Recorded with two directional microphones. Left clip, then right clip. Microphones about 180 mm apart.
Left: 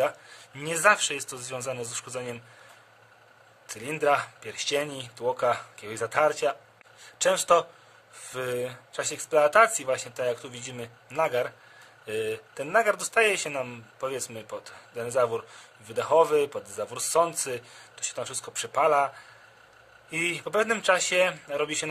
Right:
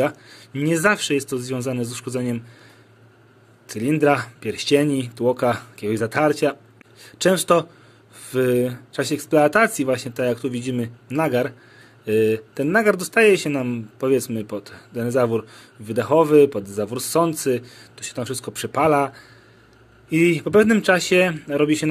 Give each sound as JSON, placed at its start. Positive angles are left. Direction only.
{"t": 0.0, "sound": "speech", "side_deg": -15}
{"t": 3.6, "sound": "speech", "side_deg": -20}